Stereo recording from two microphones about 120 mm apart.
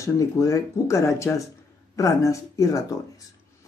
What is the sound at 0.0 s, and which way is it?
Speech, 25° left (ahead or behind).